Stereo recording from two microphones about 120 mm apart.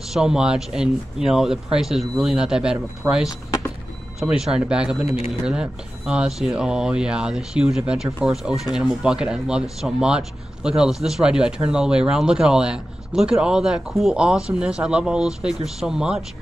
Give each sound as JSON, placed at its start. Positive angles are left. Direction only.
{"t": 0.1, "sound": "speech", "side_deg": -5}
{"t": 3.0, "sound": "speech", "side_deg": -20}
{"t": 4.2, "sound": "speech", "side_deg": -5}